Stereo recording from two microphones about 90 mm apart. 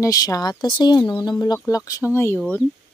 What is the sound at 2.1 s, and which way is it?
Speech, 25° left (ahead or behind).